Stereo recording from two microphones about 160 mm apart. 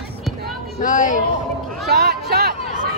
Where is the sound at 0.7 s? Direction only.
55° left (ahead or behind).